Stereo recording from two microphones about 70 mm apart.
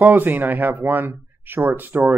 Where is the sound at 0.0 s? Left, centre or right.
Right.